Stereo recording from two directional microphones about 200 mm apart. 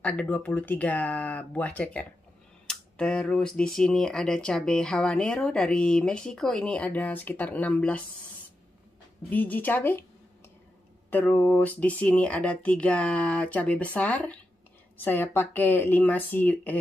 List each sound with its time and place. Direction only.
0.0 s speech: 5° left (ahead or behind)
9.3 s speech: 10° left (ahead or behind)
11.1 s speech: 10° left (ahead or behind)